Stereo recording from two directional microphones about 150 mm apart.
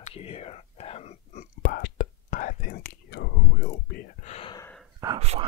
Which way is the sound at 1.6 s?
85° left.